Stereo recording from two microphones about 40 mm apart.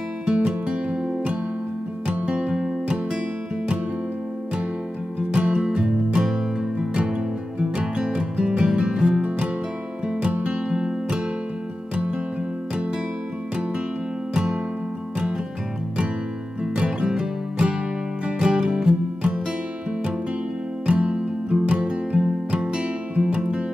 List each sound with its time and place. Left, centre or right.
0.2 s music: right
5.3 s music: right
14.3 s music: centre
16.7 s music: right
20.8 s music: right